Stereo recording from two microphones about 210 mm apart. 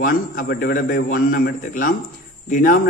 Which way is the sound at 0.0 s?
45° left (ahead or behind).